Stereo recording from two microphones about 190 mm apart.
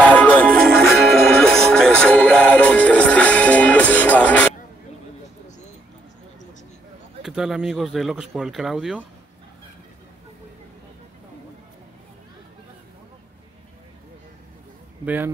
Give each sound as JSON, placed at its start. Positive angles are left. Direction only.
{"t": 0.1, "sound": "music", "side_deg": 10}
{"t": 7.2, "sound": "speech", "side_deg": -5}
{"t": 15.0, "sound": "speech", "side_deg": -10}